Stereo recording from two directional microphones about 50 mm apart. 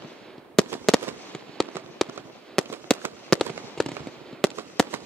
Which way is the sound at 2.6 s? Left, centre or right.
Centre.